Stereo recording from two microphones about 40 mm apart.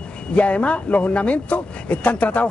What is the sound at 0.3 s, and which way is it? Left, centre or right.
A man's voice, left.